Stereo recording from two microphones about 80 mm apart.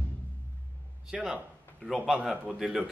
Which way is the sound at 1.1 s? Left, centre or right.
Centre.